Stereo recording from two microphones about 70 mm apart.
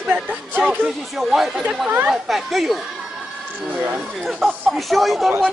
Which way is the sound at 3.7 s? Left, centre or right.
Right.